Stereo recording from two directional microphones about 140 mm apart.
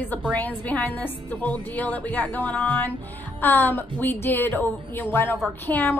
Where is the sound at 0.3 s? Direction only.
10° left (ahead or behind).